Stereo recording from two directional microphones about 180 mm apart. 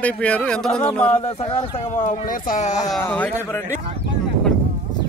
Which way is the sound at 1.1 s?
35° left (ahead or behind).